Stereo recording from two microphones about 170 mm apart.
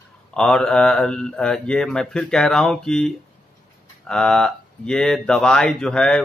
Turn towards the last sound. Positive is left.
turn(degrees=5)  # may be behind; listen again after turning